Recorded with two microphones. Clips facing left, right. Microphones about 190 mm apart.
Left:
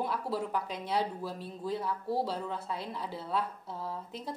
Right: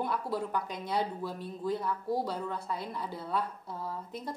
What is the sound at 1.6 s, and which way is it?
A woman's voice, 10° left (ahead or behind).